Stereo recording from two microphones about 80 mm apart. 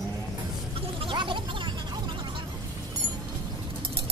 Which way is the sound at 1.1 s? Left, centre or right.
Right.